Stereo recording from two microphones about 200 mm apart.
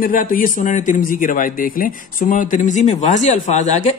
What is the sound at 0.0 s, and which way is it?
A man's voice, 45° left (ahead or behind).